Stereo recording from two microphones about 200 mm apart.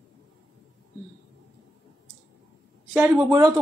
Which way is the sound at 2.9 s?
5° right (ahead or behind).